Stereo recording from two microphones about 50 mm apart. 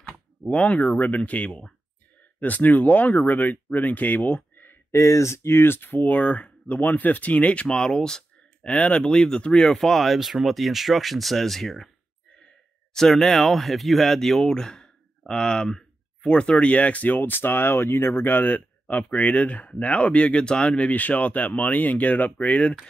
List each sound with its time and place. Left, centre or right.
0.5 s speech: left
4.9 s speech: left; by 11.9 s centre
12.9 s speech: centre
16.5 s speech: left